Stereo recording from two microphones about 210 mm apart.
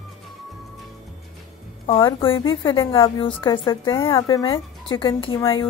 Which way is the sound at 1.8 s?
25° left (ahead or behind).